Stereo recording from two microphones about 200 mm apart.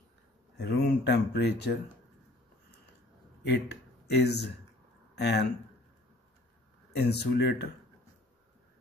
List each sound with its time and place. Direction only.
0.6 s speech: 55° left (ahead or behind)
3.4 s speech: 55° left (ahead or behind)
6.9 s speech: 55° left (ahead or behind)